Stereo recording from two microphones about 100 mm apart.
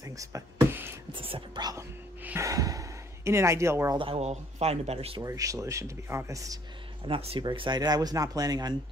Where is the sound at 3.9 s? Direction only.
70° right (ahead or behind).